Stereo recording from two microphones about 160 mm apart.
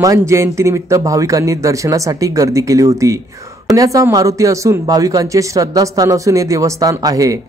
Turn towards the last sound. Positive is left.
turn(degrees=-20)  # may be behind; listen again after turning